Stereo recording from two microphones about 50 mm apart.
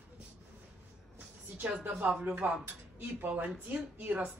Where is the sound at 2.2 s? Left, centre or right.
Right.